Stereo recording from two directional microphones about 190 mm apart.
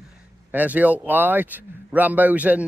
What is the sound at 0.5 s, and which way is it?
A man's voice, 10° right (ahead or behind).